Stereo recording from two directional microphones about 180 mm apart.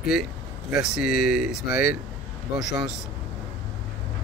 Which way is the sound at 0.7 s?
5° right (ahead or behind).